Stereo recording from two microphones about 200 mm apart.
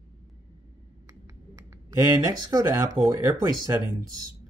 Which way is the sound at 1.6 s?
15° right (ahead or behind).